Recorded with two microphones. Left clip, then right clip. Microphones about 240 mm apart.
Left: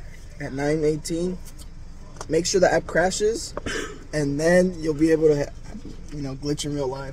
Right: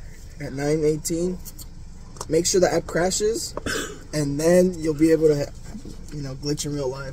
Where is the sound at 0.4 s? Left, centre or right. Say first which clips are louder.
Even; centre.